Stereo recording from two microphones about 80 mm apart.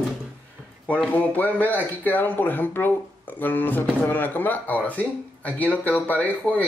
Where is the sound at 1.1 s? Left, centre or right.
Centre.